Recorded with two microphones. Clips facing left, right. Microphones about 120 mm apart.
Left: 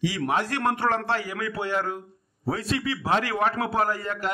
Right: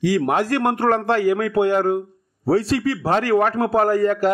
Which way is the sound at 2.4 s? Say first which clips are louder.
Right 9 dB; 35° right (ahead or behind).